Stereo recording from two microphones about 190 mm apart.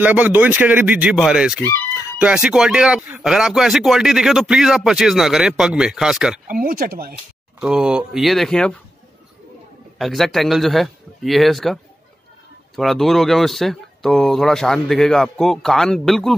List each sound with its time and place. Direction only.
0.0 s speech: 10° right (ahead or behind)
6.4 s speech: 45° right (ahead or behind)
7.6 s speech: 5° right (ahead or behind)
9.9 s speech: centre (ahead or behind)